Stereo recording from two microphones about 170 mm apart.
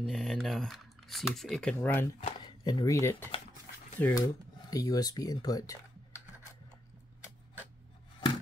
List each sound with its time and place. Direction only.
0.0 s speech: centre (ahead or behind)
2.1 s speech: 35° left (ahead or behind)
2.6 s speech: 20° left (ahead or behind)
4.6 s speech: 20° left (ahead or behind)